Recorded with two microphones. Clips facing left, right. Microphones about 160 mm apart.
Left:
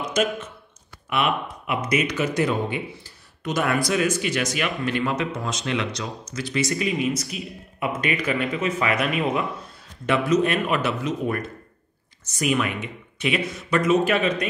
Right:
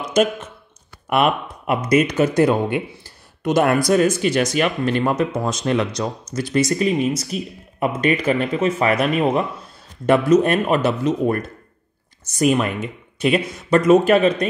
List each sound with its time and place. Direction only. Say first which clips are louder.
1.1 s speech: right 6 dB; 45° right (ahead or behind)
3.4 s speech: right 7 dB; 55° right (ahead or behind)
3.8 s speech: right 6 dB; 40° right (ahead or behind)